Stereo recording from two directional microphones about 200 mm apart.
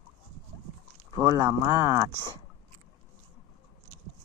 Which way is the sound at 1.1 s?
20° right (ahead or behind).